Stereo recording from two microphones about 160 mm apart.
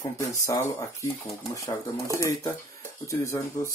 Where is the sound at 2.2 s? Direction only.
20° left (ahead or behind).